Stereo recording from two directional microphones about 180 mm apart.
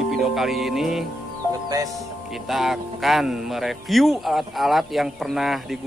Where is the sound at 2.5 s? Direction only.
Centre (ahead or behind).